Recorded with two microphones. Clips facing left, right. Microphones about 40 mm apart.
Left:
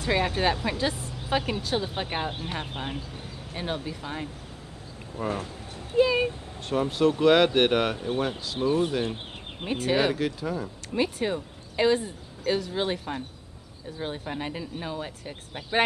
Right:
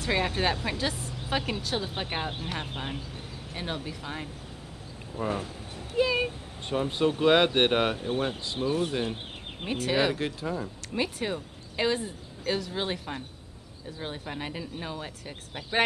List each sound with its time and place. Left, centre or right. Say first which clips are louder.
0.0 s speech: left 2 dB; centre
6.9 s speech: left 2 dB; centre
10.9 s speech: left 4 dB; centre